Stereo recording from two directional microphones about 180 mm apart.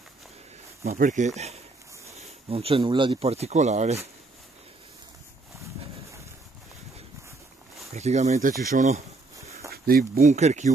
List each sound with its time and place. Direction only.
0.9 s speech: 45° right (ahead or behind)
7.9 s speech: 40° right (ahead or behind)
9.7 s speech: 55° right (ahead or behind)
10.3 s speech: 40° right (ahead or behind)